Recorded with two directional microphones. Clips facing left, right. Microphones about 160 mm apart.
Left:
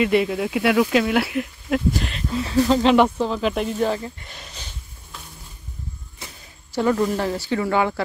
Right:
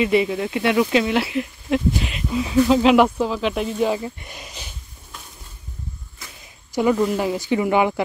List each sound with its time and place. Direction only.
0.0 s speech: centre (ahead or behind)
3.9 s speech: 15° right (ahead or behind)
6.7 s speech: 10° right (ahead or behind)